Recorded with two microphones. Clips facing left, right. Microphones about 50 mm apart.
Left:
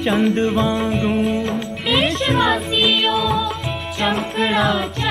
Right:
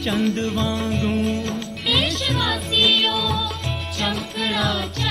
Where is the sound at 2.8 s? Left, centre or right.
Centre.